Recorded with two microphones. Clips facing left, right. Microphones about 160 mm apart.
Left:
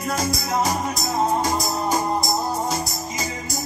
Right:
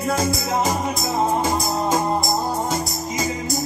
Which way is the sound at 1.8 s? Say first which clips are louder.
Right 2 dB; 20° right (ahead or behind).